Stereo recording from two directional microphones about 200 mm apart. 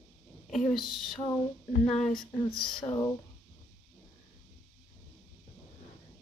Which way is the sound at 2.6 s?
25° left (ahead or behind).